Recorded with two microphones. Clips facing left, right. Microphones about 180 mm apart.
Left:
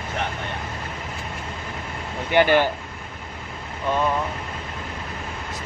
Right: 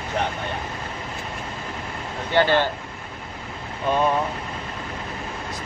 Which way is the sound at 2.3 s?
15° left (ahead or behind).